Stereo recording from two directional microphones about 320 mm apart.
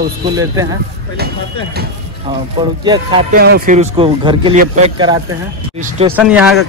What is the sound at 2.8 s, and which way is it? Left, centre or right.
Speech, centre.